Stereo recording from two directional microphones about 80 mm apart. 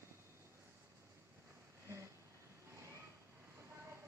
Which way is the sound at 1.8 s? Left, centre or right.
Right.